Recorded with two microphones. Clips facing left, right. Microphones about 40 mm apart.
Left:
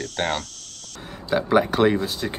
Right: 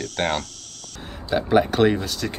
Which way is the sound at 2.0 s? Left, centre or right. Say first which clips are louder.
Left 1 dB; left.